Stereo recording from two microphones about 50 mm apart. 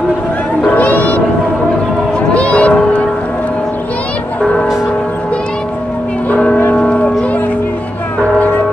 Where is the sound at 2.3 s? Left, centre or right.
Left.